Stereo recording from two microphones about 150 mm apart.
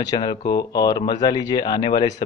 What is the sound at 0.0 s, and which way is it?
Speech, 25° left (ahead or behind).